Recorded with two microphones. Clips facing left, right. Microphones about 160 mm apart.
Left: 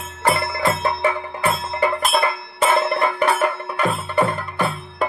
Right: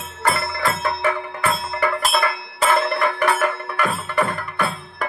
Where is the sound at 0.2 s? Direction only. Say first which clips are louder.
Left 2 dB; 25° left (ahead or behind).